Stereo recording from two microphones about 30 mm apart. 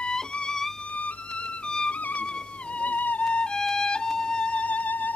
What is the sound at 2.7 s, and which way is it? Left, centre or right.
Music, left.